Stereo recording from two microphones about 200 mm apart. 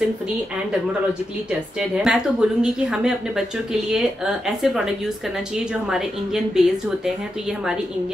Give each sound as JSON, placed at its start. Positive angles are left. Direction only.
{"t": 1.8, "sound": "speech", "side_deg": -5}